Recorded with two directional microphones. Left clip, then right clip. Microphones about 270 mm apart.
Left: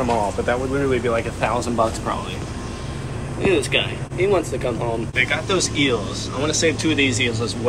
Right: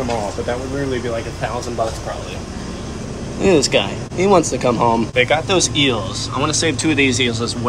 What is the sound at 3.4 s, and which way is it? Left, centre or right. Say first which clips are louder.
Speech: right 5 dB; right.